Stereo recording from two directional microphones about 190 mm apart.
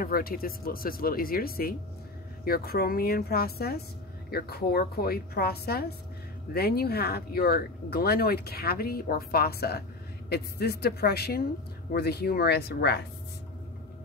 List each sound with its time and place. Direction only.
0.0 s a woman's voice: 50° left (ahead or behind)